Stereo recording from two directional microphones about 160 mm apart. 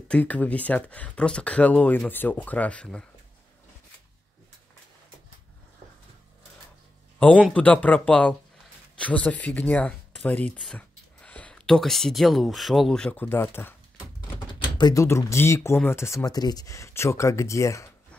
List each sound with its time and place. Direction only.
0.1 s speech: 10° left (ahead or behind)
7.2 s speech: 10° left (ahead or behind)
14.5 s speech: 30° left (ahead or behind)